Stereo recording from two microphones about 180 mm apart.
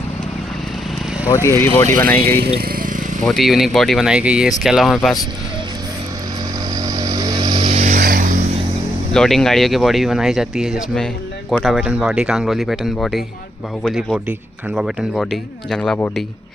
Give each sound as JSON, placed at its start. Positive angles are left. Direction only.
{"t": 1.3, "sound": "speech", "side_deg": 15}
{"t": 3.2, "sound": "speech", "side_deg": 0}
{"t": 6.8, "sound": "vehicle", "side_deg": -20}
{"t": 7.8, "sound": "a sound", "side_deg": -50}
{"t": 9.1, "sound": "speech", "side_deg": 5}